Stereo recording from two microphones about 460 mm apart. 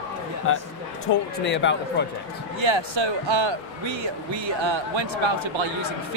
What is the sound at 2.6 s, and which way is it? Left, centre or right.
Speech, right.